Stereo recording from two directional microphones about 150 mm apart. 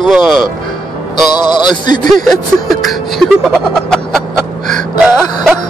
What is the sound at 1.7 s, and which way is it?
Speech, 30° left (ahead or behind).